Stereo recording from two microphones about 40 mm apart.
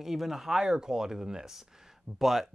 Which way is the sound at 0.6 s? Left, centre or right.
Centre.